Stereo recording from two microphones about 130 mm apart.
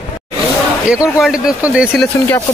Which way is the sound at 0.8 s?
5° right (ahead or behind).